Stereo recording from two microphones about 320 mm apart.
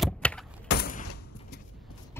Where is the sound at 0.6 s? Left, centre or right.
Left.